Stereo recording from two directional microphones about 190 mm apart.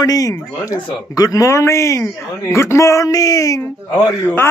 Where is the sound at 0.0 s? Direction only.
20° left (ahead or behind).